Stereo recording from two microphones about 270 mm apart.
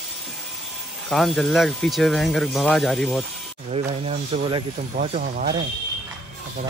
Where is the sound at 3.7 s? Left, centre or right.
Right.